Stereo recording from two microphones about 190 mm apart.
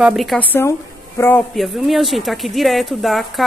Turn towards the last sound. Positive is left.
turn(degrees=0)  # may be behind; listen again after turning